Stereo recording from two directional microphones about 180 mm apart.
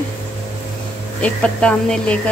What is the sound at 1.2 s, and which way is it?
Speech, 5° left (ahead or behind).